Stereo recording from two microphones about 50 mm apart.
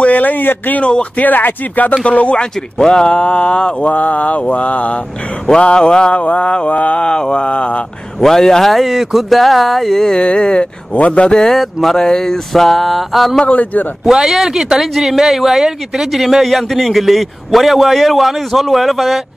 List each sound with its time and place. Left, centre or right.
0.0 s speech: left
0.8 s mantra: left
1.2 s speech: left
2.0 s mantra: left
8.2 s a man's voice: centre
10.3 s mantra: centre
11.3 s a man's voice: centre
13.5 s speech: left
14.0 s a man's voice: centre